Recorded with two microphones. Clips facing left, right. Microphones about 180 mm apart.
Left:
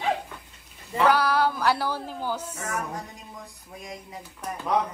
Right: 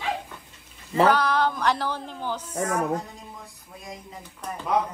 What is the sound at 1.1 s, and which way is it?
Cat, 10° left (ahead or behind).